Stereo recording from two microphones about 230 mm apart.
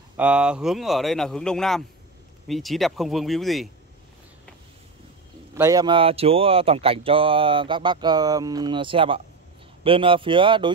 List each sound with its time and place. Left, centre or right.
0.2 s a man's voice: centre
5.5 s speech: centre